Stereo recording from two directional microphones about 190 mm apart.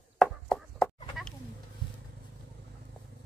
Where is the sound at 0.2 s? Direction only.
5° left (ahead or behind).